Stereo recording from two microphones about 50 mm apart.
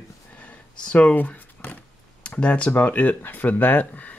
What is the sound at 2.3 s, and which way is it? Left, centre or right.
Speech, left.